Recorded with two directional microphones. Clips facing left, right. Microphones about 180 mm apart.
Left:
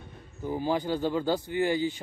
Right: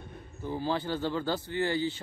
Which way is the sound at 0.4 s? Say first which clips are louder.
Left 3 dB; 15° left (ahead or behind).